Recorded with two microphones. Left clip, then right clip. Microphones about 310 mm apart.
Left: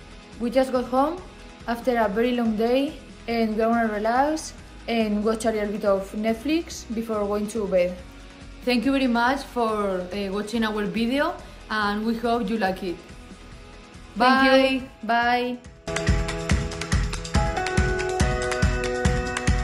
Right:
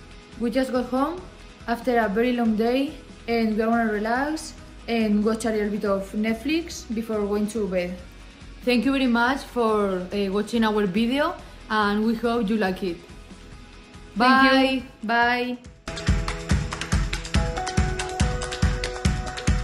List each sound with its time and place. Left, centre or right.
0.5 s a woman's voice: centre
14.1 s music: centre